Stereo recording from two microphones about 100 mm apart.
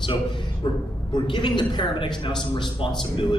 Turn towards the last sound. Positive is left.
turn(degrees=55)  # may be behind; listen again after turning